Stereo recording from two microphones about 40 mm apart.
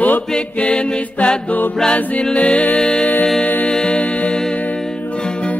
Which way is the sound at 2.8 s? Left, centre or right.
Left.